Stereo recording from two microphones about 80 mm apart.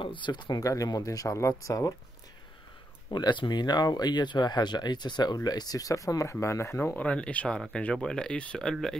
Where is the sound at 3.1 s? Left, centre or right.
Left.